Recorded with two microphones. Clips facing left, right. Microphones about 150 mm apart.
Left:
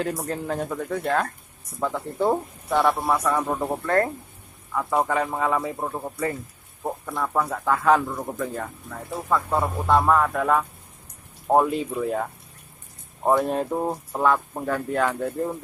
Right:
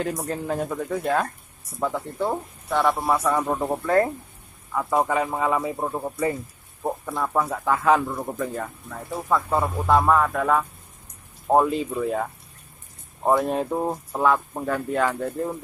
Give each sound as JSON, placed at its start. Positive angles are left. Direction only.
{"t": 0.2, "sound": "speech", "side_deg": -5}
{"t": 13.4, "sound": "speech", "side_deg": 0}